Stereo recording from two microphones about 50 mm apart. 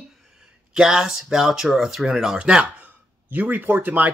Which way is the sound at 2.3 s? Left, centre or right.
Right.